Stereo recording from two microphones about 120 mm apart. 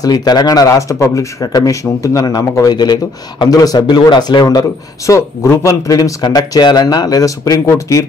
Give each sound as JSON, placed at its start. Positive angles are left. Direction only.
{"t": 0.0, "sound": "speech", "side_deg": 35}